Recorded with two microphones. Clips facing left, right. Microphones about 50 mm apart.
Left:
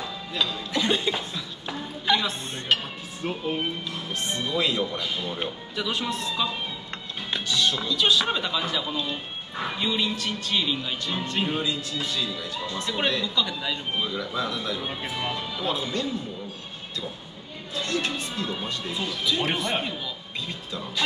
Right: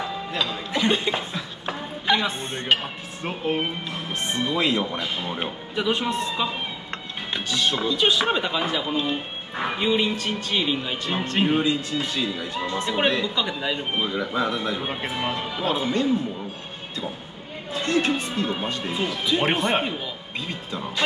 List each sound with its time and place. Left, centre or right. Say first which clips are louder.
0.0 s speech: right 2 dB; right
17.7 s speech: right 5 dB; right